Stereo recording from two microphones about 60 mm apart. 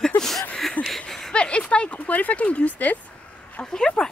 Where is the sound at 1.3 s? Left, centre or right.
Centre.